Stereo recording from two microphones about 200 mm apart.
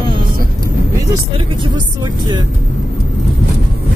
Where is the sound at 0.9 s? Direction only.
20° right (ahead or behind).